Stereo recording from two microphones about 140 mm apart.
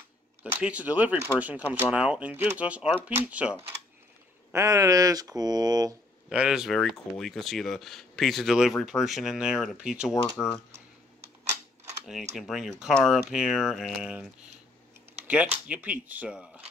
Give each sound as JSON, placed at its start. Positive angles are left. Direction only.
{"t": 0.4, "sound": "speech", "side_deg": -10}
{"t": 4.5, "sound": "speech", "side_deg": -20}
{"t": 6.2, "sound": "speech", "side_deg": -5}
{"t": 12.4, "sound": "speech", "side_deg": 0}
{"t": 15.2, "sound": "speech", "side_deg": -10}